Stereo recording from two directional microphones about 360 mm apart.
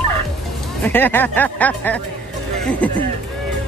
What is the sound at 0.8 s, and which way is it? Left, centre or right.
Speech, centre.